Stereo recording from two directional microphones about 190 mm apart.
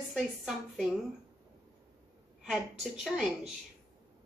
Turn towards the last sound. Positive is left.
turn(degrees=0)  # may be behind; listen again after turning